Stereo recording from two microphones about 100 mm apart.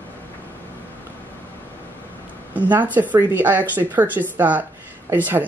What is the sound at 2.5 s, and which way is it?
Speech, 15° right (ahead or behind).